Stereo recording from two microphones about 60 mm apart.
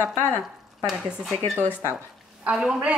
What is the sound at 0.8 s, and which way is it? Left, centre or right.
Speech, centre.